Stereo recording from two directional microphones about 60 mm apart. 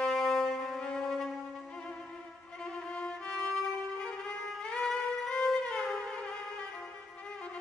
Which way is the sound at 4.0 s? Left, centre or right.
Centre.